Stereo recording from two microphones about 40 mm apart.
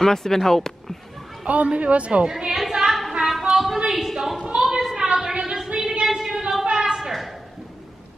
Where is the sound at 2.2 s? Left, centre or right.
Centre.